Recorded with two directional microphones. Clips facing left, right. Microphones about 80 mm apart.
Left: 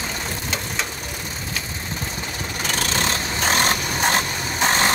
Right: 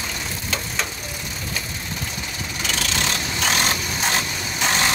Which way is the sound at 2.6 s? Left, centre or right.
Left.